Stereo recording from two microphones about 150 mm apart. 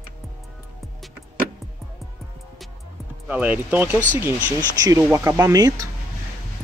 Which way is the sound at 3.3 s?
10° right (ahead or behind).